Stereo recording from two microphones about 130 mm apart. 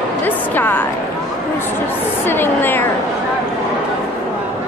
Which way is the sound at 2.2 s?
15° left (ahead or behind).